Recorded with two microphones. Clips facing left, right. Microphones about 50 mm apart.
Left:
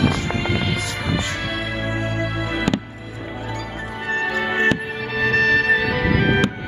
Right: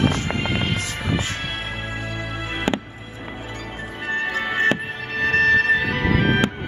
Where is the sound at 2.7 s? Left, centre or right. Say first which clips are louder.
Even; right.